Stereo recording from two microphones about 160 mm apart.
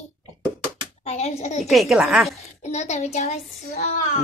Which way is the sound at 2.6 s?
45° left (ahead or behind).